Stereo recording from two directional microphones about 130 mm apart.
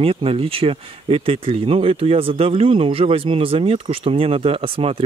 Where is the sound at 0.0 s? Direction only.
45° right (ahead or behind).